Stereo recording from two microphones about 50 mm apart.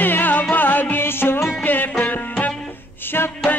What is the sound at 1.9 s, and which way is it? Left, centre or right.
Music, left.